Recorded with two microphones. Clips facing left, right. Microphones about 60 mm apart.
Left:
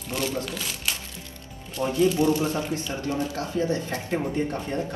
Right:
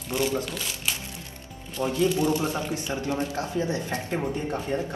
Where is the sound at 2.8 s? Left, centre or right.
Right.